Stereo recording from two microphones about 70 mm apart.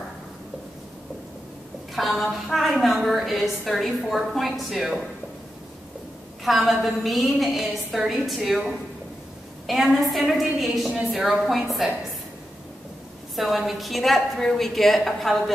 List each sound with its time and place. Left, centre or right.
2.0 s a woman's voice: centre
6.4 s a woman's voice: centre
13.4 s a woman's voice: centre